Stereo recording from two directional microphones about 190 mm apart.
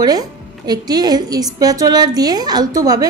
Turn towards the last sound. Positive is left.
turn(degrees=-20)  # may be behind; listen again after turning